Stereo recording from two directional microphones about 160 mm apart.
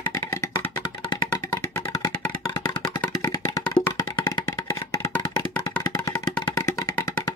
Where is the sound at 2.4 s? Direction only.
30° left (ahead or behind).